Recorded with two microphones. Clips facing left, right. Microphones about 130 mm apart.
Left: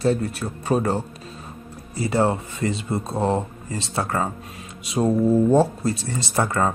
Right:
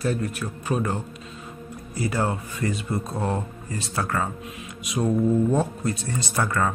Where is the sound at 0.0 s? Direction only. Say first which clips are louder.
Left 4 dB; 30° left (ahead or behind).